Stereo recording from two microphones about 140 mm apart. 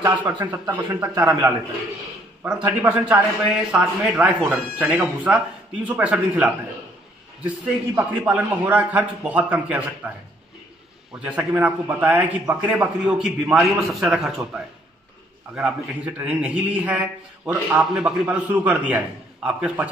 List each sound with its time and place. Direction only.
0.5 s a man's voice: 15° right (ahead or behind)
2.4 s a man's voice: 10° right (ahead or behind)
11.2 s a man's voice: 10° right (ahead or behind)